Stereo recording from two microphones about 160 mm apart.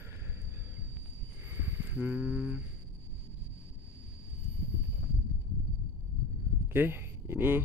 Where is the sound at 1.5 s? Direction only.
15° right (ahead or behind).